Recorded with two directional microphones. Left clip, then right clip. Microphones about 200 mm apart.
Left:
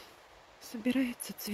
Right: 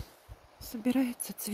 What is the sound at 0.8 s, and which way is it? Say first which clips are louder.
Speech: right 2 dB; 15° right (ahead or behind).